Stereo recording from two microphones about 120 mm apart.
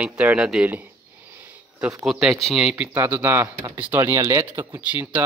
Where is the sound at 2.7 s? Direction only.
15° right (ahead or behind).